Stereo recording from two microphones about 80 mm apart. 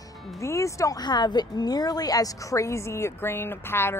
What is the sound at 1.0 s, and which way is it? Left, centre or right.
A woman's voice, left.